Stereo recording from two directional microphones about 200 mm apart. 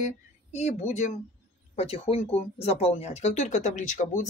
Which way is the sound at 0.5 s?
35° left (ahead or behind).